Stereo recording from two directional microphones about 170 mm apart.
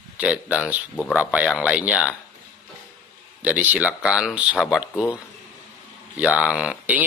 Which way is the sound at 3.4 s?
10° right (ahead or behind).